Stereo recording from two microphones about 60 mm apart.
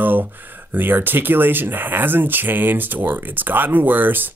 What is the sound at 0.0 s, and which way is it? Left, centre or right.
Speech, right.